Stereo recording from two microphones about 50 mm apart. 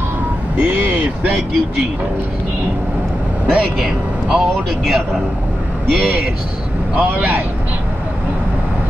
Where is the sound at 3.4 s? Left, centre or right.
Centre.